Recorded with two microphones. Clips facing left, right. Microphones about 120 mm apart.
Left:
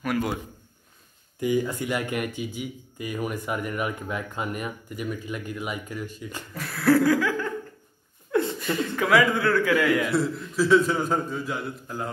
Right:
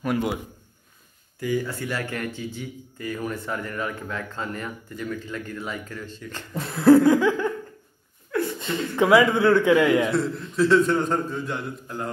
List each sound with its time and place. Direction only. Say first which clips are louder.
0.0 s a man's voice: right 2 dB; 25° right (ahead or behind)
1.4 s speech: left 2 dB; 20° left (ahead or behind)
6.5 s laughter: right 6 dB; 25° right (ahead or behind)
8.3 s laughter: left 2 dB; 20° left (ahead or behind)
8.5 s a man's voice: right 3 dB; 25° right (ahead or behind)
10.1 s a man's voice: right 1 dB; 5° left (ahead or behind)